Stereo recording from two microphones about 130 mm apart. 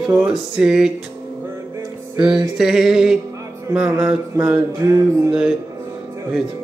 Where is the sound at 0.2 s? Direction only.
5° right (ahead or behind).